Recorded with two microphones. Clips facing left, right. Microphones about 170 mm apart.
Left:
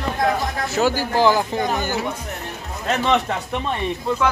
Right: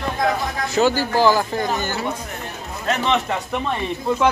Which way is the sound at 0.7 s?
5° left (ahead or behind).